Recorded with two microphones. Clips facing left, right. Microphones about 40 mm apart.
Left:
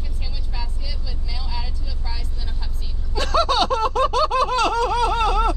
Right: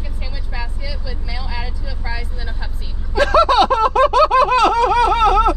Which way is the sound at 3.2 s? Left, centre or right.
Right.